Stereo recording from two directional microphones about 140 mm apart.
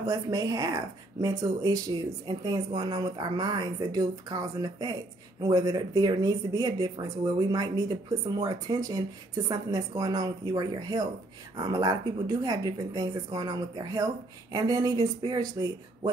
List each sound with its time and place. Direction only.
0.0 s speech: 25° right (ahead or behind)